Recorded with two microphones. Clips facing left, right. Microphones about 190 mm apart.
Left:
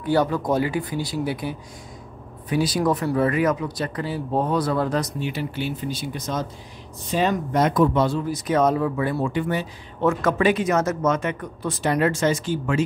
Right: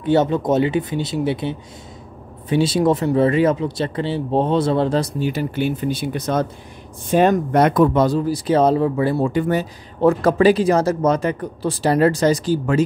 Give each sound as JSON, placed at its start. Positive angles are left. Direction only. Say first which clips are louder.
{"t": 0.0, "sound": "speech", "louder": "right 4 dB", "side_deg": -25}
{"t": 5.3, "sound": "speech", "louder": "right 6 dB", "side_deg": -45}
{"t": 8.0, "sound": "speech", "louder": "right 5 dB", "side_deg": -35}